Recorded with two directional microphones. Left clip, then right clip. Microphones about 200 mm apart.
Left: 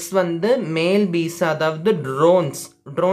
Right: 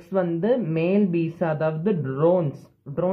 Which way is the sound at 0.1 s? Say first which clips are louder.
Left 4 dB; 15° left (ahead or behind).